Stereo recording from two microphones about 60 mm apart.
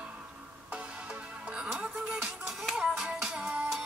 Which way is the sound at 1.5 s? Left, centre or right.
Centre.